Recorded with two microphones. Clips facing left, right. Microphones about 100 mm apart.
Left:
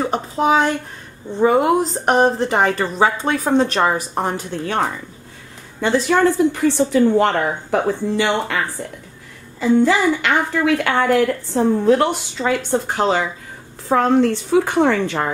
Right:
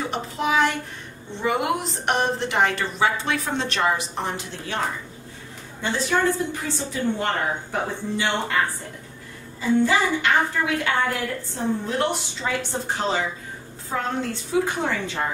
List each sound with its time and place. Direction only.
0.0 s a sound: 35° left (ahead or behind)
1.4 s a woman's voice: 35° left (ahead or behind)
5.8 s a woman's voice: 75° left (ahead or behind)
9.6 s a woman's voice: 75° left (ahead or behind); by 15.2 s 60° left (ahead or behind)